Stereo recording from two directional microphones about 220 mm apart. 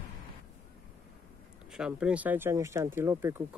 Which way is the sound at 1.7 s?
5° right (ahead or behind).